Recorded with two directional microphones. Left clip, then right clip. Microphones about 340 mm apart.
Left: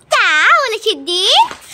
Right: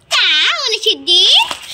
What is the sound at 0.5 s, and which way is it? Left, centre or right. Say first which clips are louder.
Speech: left 1 dB; centre.